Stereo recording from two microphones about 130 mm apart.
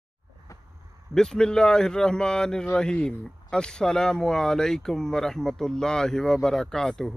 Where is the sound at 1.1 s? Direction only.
5° left (ahead or behind).